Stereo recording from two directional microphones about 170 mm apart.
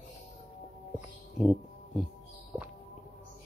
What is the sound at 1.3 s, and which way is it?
Music, centre (ahead or behind).